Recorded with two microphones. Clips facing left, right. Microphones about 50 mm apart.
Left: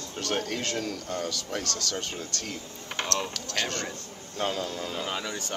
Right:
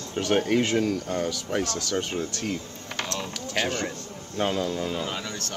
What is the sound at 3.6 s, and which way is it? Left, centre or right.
Speech, centre.